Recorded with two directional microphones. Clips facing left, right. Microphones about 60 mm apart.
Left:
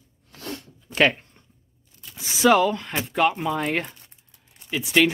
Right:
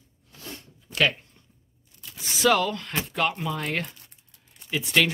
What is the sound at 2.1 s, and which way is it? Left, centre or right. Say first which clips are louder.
Speech: left 4 dB; centre.